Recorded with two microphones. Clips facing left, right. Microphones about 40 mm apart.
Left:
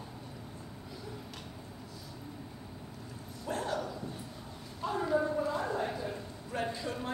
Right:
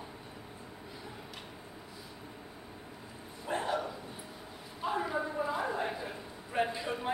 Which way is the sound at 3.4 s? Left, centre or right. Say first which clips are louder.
Right 1 dB; right.